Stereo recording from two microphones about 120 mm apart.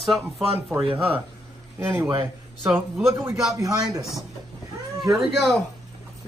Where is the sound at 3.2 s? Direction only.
20° right (ahead or behind).